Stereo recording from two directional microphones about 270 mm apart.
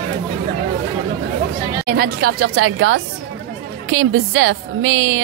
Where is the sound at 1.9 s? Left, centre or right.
Right.